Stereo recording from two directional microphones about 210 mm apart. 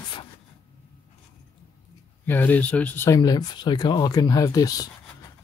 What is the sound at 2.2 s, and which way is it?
Speech, 10° left (ahead or behind).